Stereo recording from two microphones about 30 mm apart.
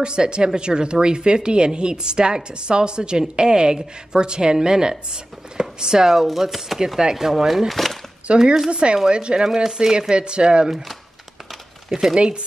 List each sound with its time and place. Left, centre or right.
0.0 s a woman's voice: right
6.1 s speech: centre
7.7 s chopping: centre
8.3 s speech: right
9.4 s speech: centre
11.9 s speech: centre